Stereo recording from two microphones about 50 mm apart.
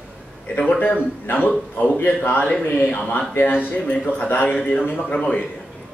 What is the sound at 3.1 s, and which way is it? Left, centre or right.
A man's voice, left.